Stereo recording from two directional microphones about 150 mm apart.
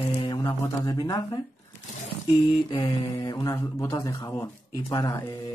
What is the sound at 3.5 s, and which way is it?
Speech, 15° left (ahead or behind).